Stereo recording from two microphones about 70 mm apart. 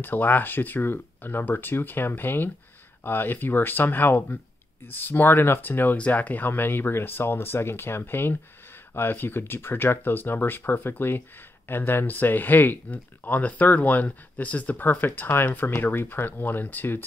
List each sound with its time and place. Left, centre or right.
0.0 s speech: left